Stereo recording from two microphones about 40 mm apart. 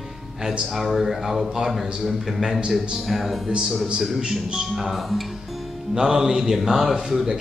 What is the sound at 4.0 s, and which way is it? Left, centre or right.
Speech, centre.